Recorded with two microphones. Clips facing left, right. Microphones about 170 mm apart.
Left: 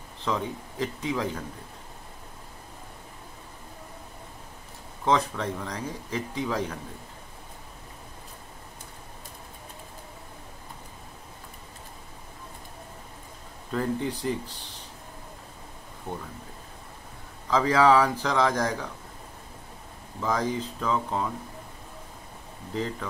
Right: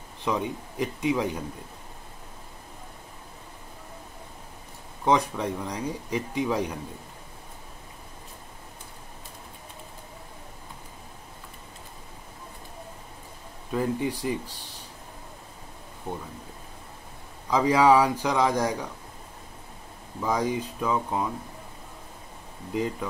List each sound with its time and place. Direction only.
0.2 s a man's voice: 15° right (ahead or behind)
5.0 s a man's voice: 15° right (ahead or behind)
13.7 s a man's voice: 10° right (ahead or behind)
17.5 s a man's voice: 15° right (ahead or behind)
20.2 s a man's voice: 10° right (ahead or behind)
22.7 s a man's voice: 15° right (ahead or behind)